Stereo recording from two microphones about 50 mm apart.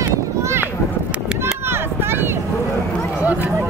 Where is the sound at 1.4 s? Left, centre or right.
Right.